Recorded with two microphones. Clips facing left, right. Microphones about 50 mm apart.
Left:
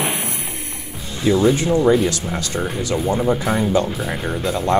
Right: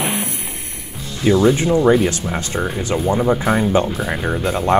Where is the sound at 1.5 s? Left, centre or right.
Right.